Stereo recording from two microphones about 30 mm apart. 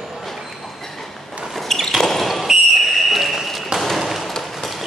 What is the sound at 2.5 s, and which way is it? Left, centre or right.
Whistle, centre.